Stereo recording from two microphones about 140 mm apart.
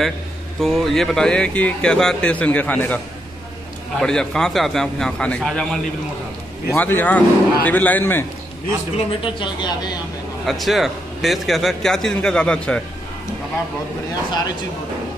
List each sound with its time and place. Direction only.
0.6 s speech: centre (ahead or behind)
4.0 s a man's voice: 5° left (ahead or behind)
8.9 s speech: 35° left (ahead or behind)
10.4 s a man's voice: centre (ahead or behind)